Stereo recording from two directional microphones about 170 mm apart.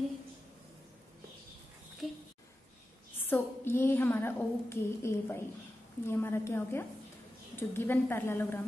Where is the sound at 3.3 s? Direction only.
10° left (ahead or behind).